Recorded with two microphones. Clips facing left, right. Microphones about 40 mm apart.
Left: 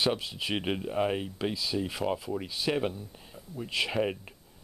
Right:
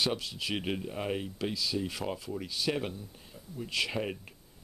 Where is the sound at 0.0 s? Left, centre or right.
Centre.